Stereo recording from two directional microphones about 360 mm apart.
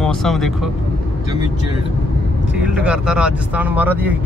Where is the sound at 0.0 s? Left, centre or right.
Centre.